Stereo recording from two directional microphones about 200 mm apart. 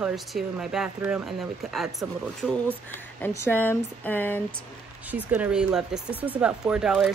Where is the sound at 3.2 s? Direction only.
10° left (ahead or behind).